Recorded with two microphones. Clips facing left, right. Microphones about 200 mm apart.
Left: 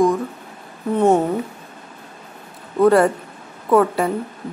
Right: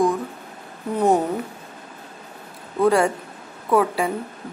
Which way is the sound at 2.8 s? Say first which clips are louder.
Left 4 dB; centre (ahead or behind).